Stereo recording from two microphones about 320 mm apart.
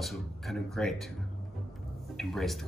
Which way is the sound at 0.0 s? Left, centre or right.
Centre.